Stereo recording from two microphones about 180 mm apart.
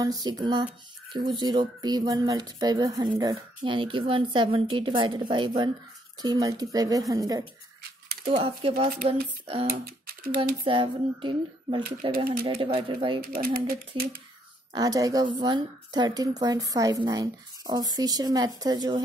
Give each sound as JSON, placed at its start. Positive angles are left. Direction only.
{"t": 0.0, "sound": "speech", "side_deg": -20}
{"t": 8.3, "sound": "speech", "side_deg": -30}
{"t": 8.9, "sound": "speech", "side_deg": -55}
{"t": 10.6, "sound": "speech", "side_deg": -30}
{"t": 13.2, "sound": "speech", "side_deg": -50}
{"t": 14.7, "sound": "speech", "side_deg": -20}